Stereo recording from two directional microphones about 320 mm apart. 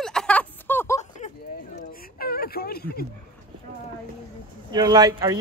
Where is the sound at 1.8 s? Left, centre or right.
Left.